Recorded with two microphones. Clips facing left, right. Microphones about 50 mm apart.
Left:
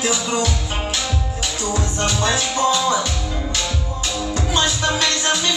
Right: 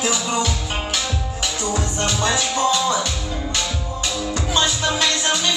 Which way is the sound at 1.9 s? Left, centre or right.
Left.